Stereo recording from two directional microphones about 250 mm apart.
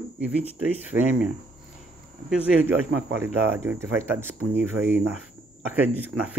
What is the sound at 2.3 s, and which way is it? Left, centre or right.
Speech, centre.